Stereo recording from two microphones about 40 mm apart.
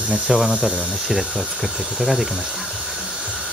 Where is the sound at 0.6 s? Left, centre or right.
Centre.